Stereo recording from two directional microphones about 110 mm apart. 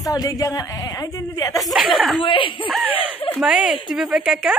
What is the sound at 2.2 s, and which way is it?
Speech, 50° left (ahead or behind).